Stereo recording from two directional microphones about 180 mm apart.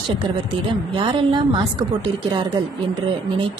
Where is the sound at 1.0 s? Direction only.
25° right (ahead or behind).